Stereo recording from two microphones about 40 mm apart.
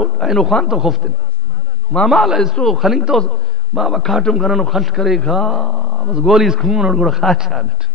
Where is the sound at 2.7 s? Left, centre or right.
Centre.